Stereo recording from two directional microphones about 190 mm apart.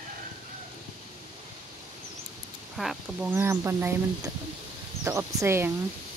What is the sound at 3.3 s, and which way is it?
Speech, 15° right (ahead or behind).